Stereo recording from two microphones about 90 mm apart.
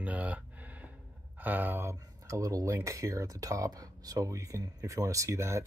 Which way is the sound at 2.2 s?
40° right (ahead or behind).